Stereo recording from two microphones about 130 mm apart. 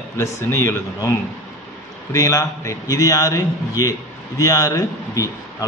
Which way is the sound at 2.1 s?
25° left (ahead or behind).